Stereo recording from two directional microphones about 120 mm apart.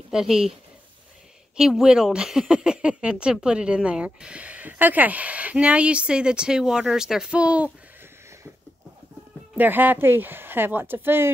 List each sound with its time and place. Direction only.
0.1 s speech: 5° right (ahead or behind)
1.6 s speech: 5° right (ahead or behind)
9.6 s speech: 15° right (ahead or behind)